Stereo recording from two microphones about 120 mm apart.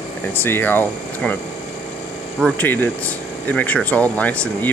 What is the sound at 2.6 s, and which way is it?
Speech, 15° left (ahead or behind).